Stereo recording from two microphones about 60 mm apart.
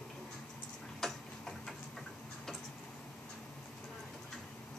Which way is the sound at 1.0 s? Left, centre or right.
Centre.